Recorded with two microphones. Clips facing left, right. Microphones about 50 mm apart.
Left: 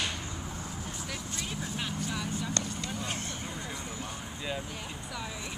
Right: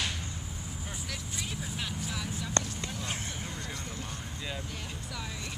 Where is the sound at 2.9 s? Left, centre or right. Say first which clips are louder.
Left 1 dB; centre.